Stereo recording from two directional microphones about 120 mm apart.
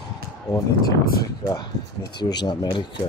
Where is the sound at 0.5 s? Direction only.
30° left (ahead or behind).